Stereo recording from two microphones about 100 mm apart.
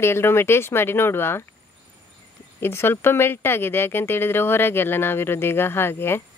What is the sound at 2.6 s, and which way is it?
Speech, 25° left (ahead or behind).